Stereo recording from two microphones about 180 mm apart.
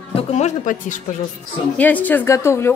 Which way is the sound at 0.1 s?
35° left (ahead or behind).